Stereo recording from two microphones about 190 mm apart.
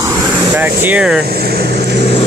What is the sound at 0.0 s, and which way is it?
Air conditioning, 20° right (ahead or behind).